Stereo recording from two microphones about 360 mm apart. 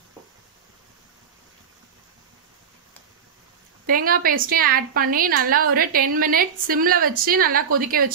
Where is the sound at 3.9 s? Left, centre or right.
Right.